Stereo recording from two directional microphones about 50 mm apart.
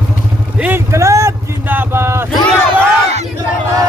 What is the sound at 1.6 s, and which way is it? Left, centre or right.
Speech, right.